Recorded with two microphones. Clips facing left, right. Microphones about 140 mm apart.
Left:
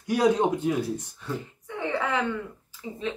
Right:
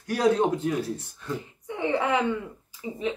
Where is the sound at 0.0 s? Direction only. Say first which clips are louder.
Even; 15° left (ahead or behind).